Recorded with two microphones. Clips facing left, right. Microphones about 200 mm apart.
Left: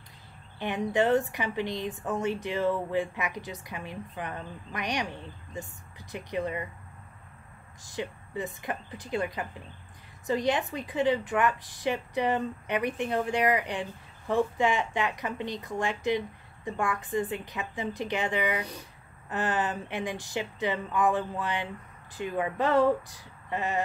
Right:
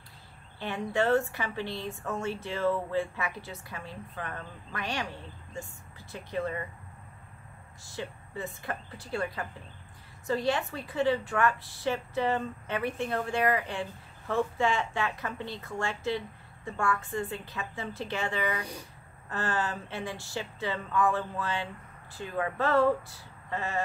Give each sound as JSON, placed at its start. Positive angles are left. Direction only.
{"t": 0.6, "sound": "a woman's voice", "side_deg": 15}
{"t": 7.8, "sound": "a woman's voice", "side_deg": 15}